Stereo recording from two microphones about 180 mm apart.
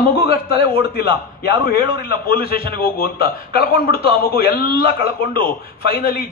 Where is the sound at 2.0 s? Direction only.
55° left (ahead or behind).